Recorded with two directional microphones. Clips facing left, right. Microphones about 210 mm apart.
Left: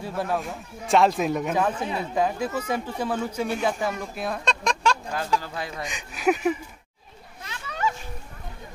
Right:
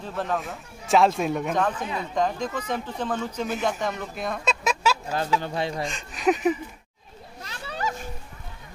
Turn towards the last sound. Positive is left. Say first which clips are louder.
# left 2 dB
turn(degrees=-35)  # may be behind; listen again after turning